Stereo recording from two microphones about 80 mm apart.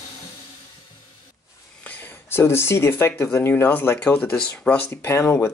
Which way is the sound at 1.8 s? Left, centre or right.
Left.